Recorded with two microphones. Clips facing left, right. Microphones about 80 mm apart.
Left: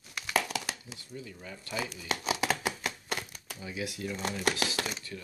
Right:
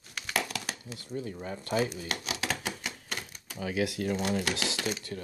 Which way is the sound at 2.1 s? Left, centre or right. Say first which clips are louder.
Left 4 dB; left.